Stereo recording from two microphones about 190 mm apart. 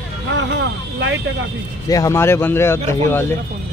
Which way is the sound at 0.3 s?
70° right (ahead or behind).